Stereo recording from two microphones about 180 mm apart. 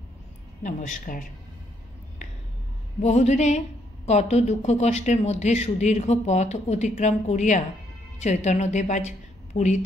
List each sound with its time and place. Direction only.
0.7 s speech: 45° left (ahead or behind)
3.0 s a woman's voice: 40° left (ahead or behind)